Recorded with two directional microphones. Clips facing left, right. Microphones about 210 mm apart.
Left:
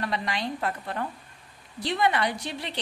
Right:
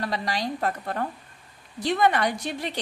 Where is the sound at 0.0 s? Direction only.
35° right (ahead or behind).